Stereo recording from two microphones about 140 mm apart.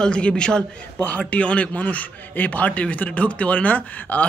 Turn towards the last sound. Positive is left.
turn(degrees=10)  # may be behind; listen again after turning